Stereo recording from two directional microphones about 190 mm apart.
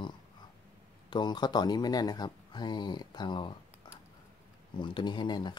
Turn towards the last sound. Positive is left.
turn(degrees=25)  # may be behind; listen again after turning